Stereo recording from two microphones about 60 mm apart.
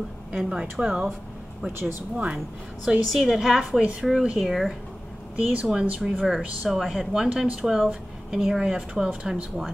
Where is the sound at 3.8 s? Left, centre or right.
Centre.